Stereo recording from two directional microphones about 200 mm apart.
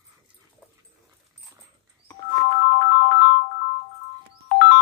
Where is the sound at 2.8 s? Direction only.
60° left (ahead or behind).